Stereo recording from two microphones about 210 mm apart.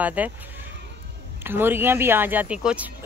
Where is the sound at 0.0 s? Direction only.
5° right (ahead or behind).